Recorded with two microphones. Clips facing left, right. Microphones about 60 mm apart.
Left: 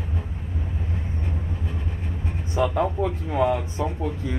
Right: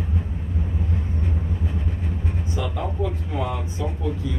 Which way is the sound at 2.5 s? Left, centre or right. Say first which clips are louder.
Left 8 dB; left.